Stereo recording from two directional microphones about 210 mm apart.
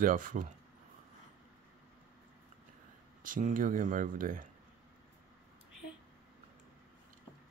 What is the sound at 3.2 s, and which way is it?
Speech, 40° right (ahead or behind).